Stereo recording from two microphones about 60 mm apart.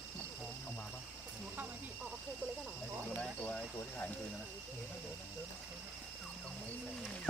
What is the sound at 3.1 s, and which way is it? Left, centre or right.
Speech, left.